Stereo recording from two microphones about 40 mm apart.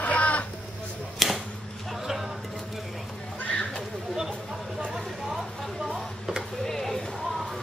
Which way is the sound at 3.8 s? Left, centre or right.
Centre.